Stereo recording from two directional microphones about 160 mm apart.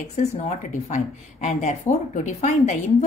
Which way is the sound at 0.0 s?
40° left (ahead or behind).